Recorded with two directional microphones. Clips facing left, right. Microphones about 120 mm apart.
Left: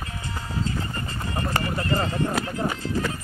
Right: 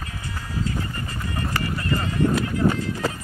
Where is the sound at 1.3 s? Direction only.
30° left (ahead or behind).